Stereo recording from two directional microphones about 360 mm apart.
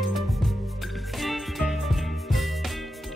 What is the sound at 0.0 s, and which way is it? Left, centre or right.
Music, centre.